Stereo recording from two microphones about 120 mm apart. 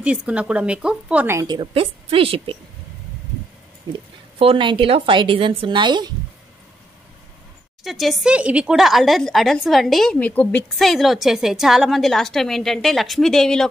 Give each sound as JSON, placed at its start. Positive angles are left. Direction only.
{"t": 0.0, "sound": "speech", "side_deg": -10}
{"t": 1.2, "sound": "a woman's voice", "side_deg": -20}
{"t": 1.5, "sound": "a woman's voice", "side_deg": -50}
{"t": 4.4, "sound": "a woman's voice", "side_deg": -45}
{"t": 7.8, "sound": "a woman's voice", "side_deg": 0}
{"t": 10.1, "sound": "a woman's voice", "side_deg": 10}
{"t": 10.8, "sound": "a woman's voice", "side_deg": 0}